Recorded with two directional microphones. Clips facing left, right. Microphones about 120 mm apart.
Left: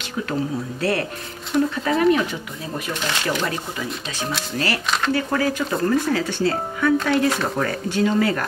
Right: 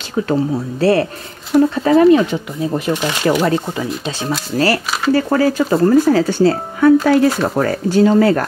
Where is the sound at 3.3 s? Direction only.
40° right (ahead or behind).